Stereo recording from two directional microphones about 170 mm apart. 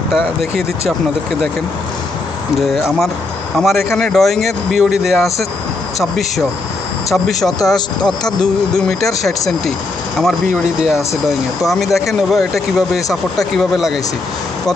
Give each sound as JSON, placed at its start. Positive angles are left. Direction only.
{"t": 0.1, "sound": "speech", "side_deg": 0}
{"t": 2.5, "sound": "speech", "side_deg": 0}
{"t": 7.2, "sound": "speech", "side_deg": 0}
{"t": 7.7, "sound": "speech", "side_deg": 25}
{"t": 8.4, "sound": "speech", "side_deg": 5}